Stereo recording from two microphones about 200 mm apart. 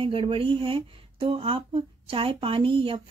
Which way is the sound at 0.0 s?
25° right (ahead or behind).